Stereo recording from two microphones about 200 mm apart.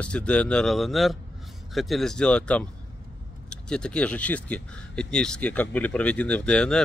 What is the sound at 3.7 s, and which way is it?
Speech, 5° left (ahead or behind).